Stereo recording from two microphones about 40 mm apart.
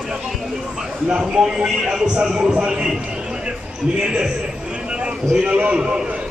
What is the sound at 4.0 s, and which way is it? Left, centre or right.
Speech, centre.